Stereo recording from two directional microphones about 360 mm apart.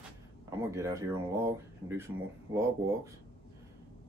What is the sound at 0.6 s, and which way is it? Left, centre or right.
Speech, centre.